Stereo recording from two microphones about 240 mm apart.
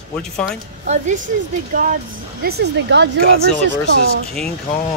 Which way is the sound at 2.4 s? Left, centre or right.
Right.